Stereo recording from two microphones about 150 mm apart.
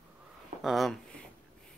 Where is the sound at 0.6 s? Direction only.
Centre (ahead or behind).